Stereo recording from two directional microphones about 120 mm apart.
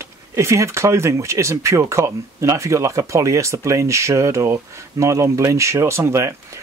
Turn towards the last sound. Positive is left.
turn(degrees=-25)  # may be behind; listen again after turning